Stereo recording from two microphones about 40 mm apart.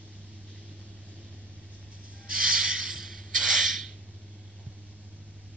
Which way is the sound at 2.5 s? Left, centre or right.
Centre.